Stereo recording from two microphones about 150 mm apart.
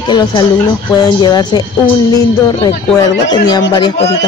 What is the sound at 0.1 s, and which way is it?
Speech, 30° left (ahead or behind).